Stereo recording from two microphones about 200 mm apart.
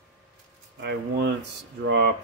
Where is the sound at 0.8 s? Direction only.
55° right (ahead or behind).